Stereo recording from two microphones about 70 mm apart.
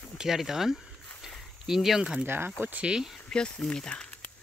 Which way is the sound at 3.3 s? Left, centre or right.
Centre.